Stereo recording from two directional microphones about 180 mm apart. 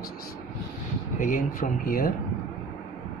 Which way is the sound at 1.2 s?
45° left (ahead or behind).